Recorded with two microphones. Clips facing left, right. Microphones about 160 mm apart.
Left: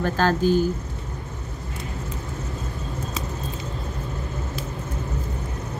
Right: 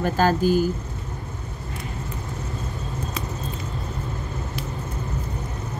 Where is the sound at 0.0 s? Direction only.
10° right (ahead or behind).